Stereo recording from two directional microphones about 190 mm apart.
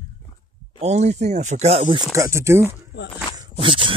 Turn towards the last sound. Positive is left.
turn(degrees=-25)  # may be behind; listen again after turning